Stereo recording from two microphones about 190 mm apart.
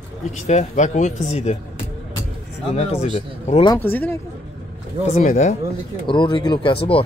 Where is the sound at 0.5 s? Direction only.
40° left (ahead or behind).